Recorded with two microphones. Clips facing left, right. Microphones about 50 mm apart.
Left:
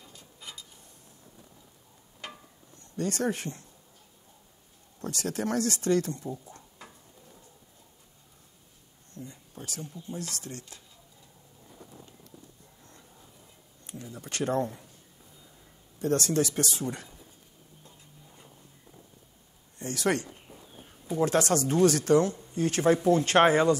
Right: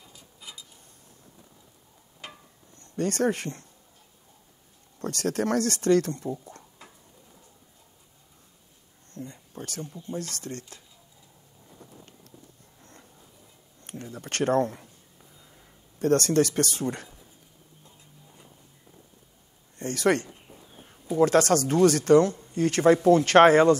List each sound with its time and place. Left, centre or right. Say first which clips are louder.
2.8 s speech: right 4 dB; right
4.9 s speech: right 5 dB; right
9.1 s speech: right 4 dB; right
13.8 s speech: right 3 dB; right
16.0 s speech: right 5 dB; right
19.8 s speech: right 4 dB; right